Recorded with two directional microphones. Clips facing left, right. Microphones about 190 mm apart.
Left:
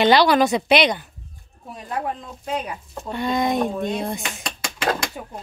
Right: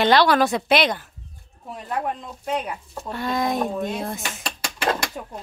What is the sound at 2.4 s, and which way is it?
Speech, centre (ahead or behind).